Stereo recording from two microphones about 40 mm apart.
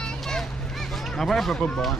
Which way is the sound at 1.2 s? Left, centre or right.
Centre.